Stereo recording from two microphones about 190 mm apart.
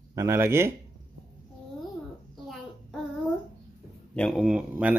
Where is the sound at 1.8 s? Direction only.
Centre (ahead or behind).